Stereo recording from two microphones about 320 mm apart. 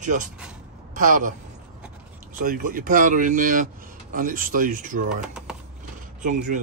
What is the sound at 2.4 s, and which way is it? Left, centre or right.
Speech, right.